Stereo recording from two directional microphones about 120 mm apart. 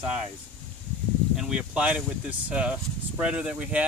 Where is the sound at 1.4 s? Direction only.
5° right (ahead or behind).